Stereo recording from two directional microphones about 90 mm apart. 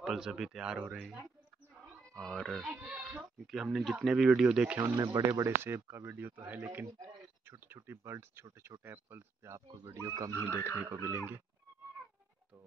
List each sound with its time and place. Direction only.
0.0 s speech: 5° right (ahead or behind)
2.1 s speech: 10° left (ahead or behind)
2.7 s speech: 10° right (ahead or behind)
3.2 s speech: centre (ahead or behind)
4.7 s speech: 40° right (ahead or behind)
5.3 s speech: 30° right (ahead or behind)